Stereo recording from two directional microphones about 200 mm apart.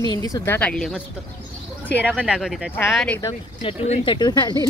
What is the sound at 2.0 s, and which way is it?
Speech, 5° right (ahead or behind).